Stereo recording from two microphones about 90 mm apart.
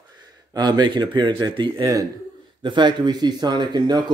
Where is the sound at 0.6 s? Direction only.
50° right (ahead or behind).